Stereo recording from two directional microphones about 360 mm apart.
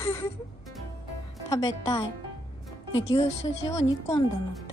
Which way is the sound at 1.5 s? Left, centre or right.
Centre.